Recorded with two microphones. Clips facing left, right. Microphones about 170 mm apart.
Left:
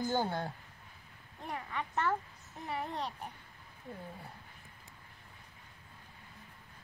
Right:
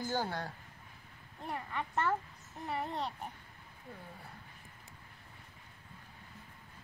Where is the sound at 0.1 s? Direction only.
25° left (ahead or behind).